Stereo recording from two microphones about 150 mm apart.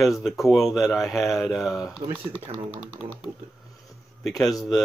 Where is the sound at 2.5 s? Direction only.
40° right (ahead or behind).